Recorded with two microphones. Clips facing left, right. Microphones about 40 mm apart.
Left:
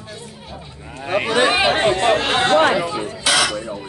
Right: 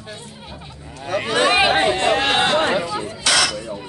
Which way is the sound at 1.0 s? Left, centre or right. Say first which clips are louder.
Left 3 dB; left.